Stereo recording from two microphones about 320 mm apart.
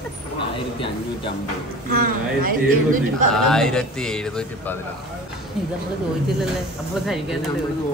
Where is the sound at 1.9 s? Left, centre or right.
Right.